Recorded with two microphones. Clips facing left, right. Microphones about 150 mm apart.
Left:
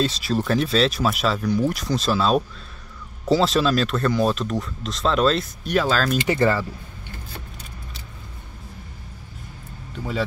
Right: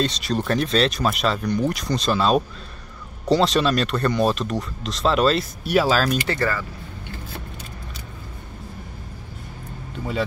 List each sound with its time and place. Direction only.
0.0 s speech: 5° left (ahead or behind)
6.1 s speech: 20° left (ahead or behind)